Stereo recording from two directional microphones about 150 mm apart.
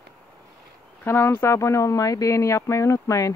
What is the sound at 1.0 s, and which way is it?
Speech, 15° left (ahead or behind).